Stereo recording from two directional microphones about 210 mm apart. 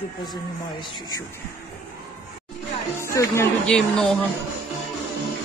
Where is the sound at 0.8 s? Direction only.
20° left (ahead or behind).